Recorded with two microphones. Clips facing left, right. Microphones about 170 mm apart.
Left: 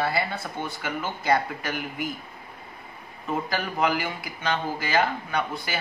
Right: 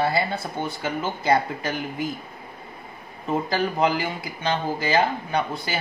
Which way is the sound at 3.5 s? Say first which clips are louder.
Right 3 dB; 25° right (ahead or behind).